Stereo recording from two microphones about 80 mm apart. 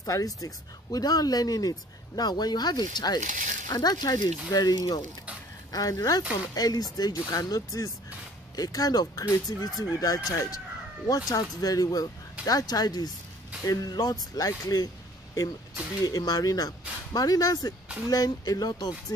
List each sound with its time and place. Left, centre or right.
0.0 s speech: left
16.0 s speech: left